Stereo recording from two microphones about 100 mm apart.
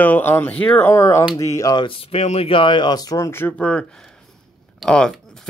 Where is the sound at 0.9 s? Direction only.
30° left (ahead or behind).